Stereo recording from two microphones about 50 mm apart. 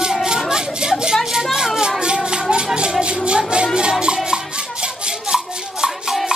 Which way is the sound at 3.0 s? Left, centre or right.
Right.